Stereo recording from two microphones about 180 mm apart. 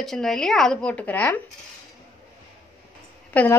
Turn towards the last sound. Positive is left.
turn(degrees=10)  # may be behind; listen again after turning